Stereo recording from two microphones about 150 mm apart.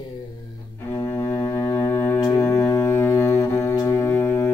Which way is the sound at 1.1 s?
20° left (ahead or behind).